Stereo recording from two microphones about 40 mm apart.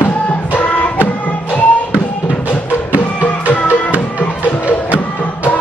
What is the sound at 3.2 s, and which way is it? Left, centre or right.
Music, left.